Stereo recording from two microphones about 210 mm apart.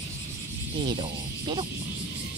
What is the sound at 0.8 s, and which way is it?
Speech, 25° right (ahead or behind).